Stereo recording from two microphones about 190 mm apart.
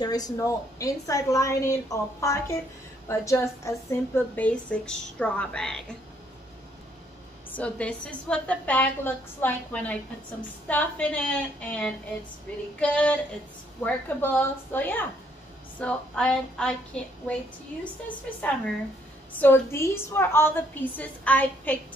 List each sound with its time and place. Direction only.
0.0 s a woman's voice: 20° left (ahead or behind)
7.5 s a woman's voice: 5° left (ahead or behind)